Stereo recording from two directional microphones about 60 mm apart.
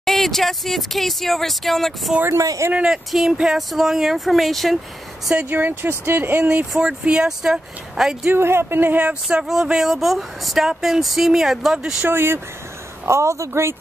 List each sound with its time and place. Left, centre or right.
0.0 s speech: centre
2.4 s speech: right
2.9 s speech: centre
5.3 s speech: right
6.7 s speech: centre
8.3 s speech: right
9.0 s speech: centre
12.1 s speech: right
13.0 s speech: right